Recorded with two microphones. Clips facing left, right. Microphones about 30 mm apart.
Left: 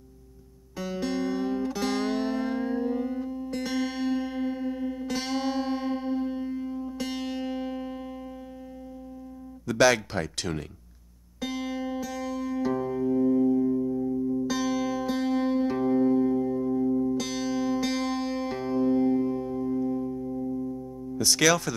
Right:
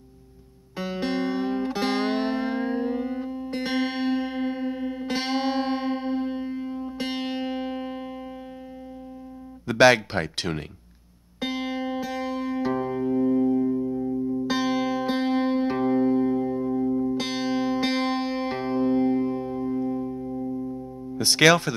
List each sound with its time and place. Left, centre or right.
0.7 s music: right
9.7 s speech: right
11.3 s music: right; by 14.1 s centre
14.5 s music: right
17.2 s music: right
21.2 s speech: right